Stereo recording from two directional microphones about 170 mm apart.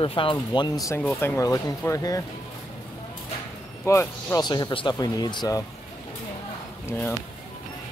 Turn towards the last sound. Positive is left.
turn(degrees=10)  # may be behind; listen again after turning